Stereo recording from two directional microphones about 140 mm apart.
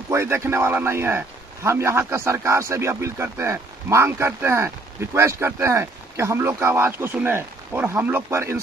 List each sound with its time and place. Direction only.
0.1 s a man's voice: 20° right (ahead or behind)